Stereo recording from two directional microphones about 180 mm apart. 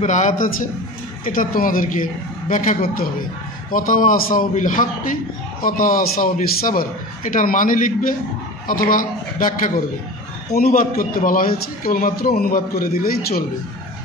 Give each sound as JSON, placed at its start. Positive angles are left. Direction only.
{"t": 0.0, "sound": "a man's voice", "side_deg": 45}